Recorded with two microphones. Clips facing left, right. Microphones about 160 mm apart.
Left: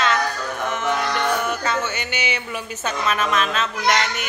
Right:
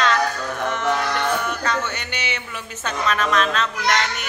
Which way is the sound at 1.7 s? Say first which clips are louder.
Left 1 dB; 5° left (ahead or behind).